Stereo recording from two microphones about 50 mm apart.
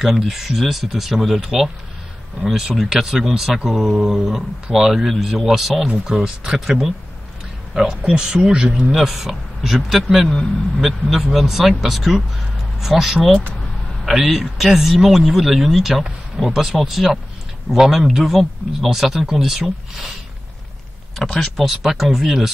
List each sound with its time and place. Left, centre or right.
0.2 s speech: centre
21.2 s speech: centre
21.6 s speech: centre